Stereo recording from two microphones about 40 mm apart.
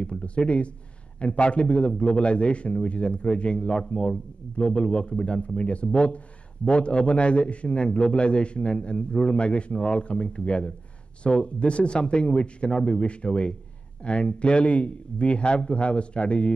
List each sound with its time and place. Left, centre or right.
0.0 s a man's voice: left